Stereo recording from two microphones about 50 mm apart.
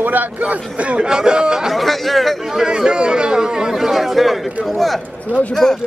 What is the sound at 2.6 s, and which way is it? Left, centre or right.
Speech, centre.